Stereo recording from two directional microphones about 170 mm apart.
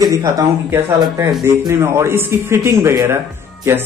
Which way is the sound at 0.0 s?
20° right (ahead or behind).